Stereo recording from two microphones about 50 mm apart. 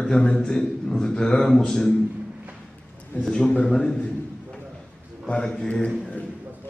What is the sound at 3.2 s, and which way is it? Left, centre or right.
Speech, centre.